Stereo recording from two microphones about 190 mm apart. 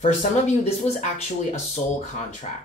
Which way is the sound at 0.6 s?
35° left (ahead or behind).